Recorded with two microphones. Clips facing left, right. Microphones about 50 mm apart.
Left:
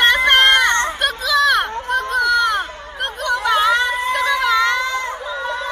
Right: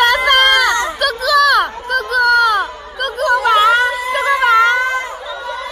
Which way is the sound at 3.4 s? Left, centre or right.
Right.